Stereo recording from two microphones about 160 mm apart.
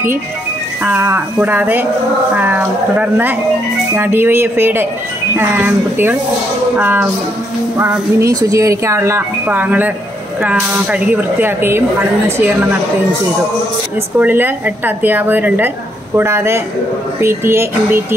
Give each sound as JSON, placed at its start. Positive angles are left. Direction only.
{"t": 0.8, "sound": "speech", "side_deg": -10}
{"t": 14.1, "sound": "speech", "side_deg": -10}